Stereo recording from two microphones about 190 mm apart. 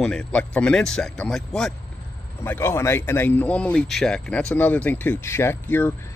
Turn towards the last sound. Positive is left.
turn(degrees=10)  # may be behind; listen again after turning